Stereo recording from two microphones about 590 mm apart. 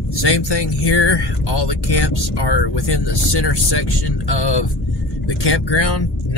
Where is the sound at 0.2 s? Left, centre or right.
Left.